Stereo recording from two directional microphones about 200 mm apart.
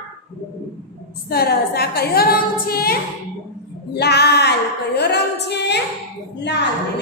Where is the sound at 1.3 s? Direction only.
50° left (ahead or behind).